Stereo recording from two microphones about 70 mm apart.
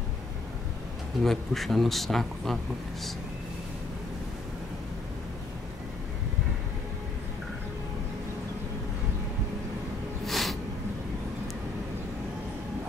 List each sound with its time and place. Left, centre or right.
1.2 s speech: centre
10.2 s snort: centre